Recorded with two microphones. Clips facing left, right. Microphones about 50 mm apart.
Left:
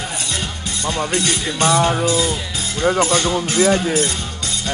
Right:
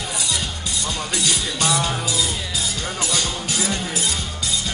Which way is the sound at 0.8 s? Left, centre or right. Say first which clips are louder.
Left 6 dB; left.